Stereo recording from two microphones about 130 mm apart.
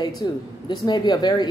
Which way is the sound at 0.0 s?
35° left (ahead or behind).